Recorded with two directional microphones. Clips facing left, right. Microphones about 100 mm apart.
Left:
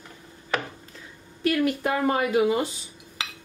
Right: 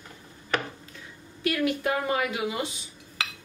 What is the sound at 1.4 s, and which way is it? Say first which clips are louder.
A woman's voice: left 3 dB; 40° left (ahead or behind).